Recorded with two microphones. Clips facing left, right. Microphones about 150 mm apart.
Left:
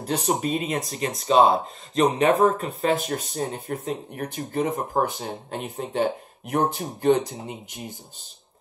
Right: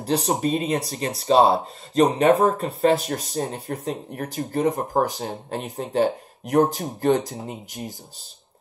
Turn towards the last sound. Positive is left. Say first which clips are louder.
# right 2 dB
turn(degrees=-40)  # may be behind; listen again after turning